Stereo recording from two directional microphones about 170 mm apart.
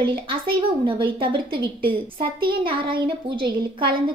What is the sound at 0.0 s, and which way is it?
A woman's voice, 30° right (ahead or behind).